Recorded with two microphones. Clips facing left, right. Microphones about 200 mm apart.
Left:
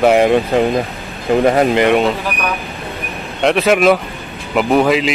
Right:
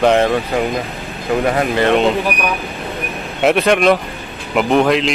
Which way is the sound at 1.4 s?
30° left (ahead or behind).